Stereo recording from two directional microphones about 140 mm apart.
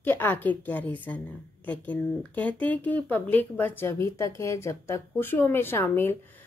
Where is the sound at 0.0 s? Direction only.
15° left (ahead or behind).